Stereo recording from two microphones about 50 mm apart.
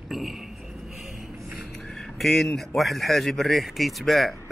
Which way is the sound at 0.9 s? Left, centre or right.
Centre.